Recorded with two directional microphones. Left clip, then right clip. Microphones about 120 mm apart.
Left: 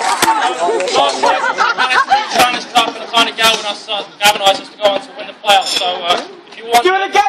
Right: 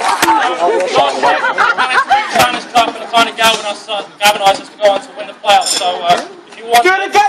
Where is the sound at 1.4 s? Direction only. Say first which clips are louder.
Right 2 dB; 65° right (ahead or behind).